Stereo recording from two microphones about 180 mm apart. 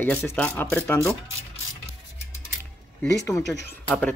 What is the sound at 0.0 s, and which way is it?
Speech, 10° left (ahead or behind).